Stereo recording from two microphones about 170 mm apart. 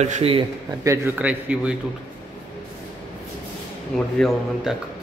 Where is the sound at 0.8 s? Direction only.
15° right (ahead or behind).